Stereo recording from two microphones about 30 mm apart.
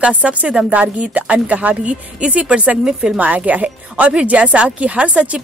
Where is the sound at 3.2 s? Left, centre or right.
Right.